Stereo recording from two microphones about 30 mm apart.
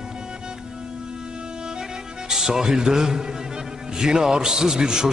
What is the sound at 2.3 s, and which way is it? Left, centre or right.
A man's voice, centre.